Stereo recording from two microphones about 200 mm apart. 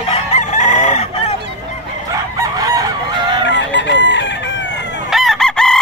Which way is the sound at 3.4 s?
60° left (ahead or behind).